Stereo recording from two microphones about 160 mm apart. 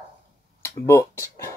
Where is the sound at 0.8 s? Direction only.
15° left (ahead or behind).